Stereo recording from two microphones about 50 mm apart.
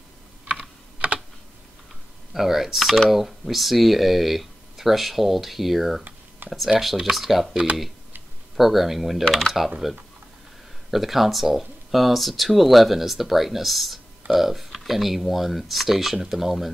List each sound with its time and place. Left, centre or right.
0.6 s typing: right
2.3 s speech: centre
8.5 s speech: centre
10.9 s speech: centre